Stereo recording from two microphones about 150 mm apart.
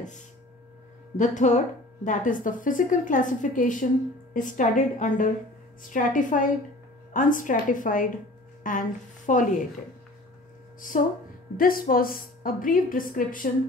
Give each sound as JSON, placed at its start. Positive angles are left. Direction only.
{"t": 1.1, "sound": "a woman's voice", "side_deg": 55}
{"t": 10.8, "sound": "a woman's voice", "side_deg": 65}